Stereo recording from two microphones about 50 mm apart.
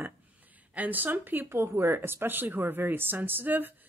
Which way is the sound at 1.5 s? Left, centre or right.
Right.